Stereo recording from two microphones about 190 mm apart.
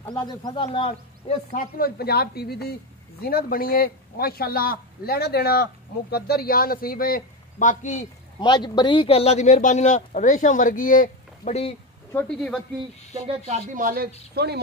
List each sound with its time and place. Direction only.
0.1 s a man's voice: 20° left (ahead or behind)
0.7 s a man's voice: 30° left (ahead or behind)
1.5 s a woman's voice: 50° left (ahead or behind)
8.4 s speech: 20° left (ahead or behind)
12.4 s speech: 5° left (ahead or behind)
13.1 s speech: 40° right (ahead or behind); by 14.6 s 60° right (ahead or behind)